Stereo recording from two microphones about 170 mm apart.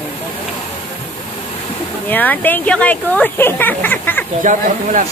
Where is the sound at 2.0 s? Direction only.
10° left (ahead or behind).